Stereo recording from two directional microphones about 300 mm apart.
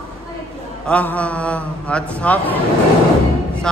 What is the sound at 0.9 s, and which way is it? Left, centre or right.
A man's voice, centre.